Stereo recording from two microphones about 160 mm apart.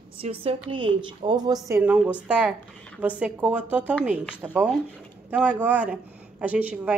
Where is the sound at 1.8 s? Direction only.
10° right (ahead or behind).